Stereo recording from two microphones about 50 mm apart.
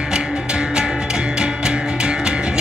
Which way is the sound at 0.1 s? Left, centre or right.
Centre.